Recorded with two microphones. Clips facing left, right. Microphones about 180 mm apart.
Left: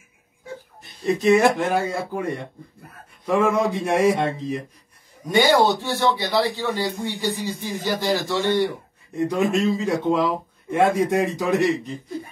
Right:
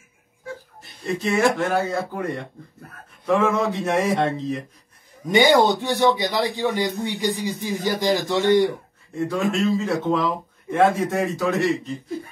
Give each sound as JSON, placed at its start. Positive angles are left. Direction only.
{"t": 1.0, "sound": "speech", "side_deg": 20}
{"t": 5.3, "sound": "a man's voice", "side_deg": -15}
{"t": 9.1, "sound": "speech", "side_deg": 20}